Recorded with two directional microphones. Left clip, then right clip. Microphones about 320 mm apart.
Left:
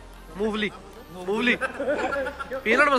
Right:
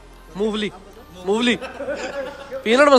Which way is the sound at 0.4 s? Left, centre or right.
Centre.